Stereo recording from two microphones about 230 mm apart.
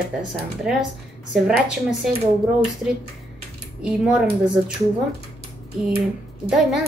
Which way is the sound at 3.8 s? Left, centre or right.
Centre.